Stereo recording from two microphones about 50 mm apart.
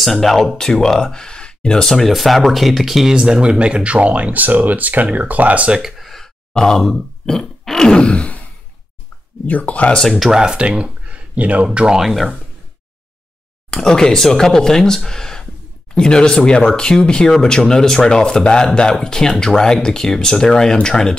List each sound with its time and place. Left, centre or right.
0.0 s speech: centre; by 5.8 s right
5.8 s speech: centre
6.0 s grunt: centre; by 8.4 s left
9.5 s speech: left
10.0 s speech: centre
10.3 s speech: centre
10.6 s speech: right
12.0 s speech: centre
13.7 s speech: centre